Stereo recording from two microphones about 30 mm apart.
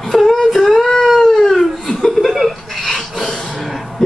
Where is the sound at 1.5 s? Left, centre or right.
Centre.